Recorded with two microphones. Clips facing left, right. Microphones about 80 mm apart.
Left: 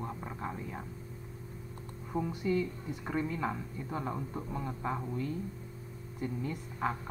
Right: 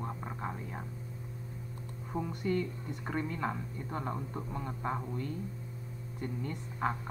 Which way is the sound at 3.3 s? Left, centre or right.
Centre.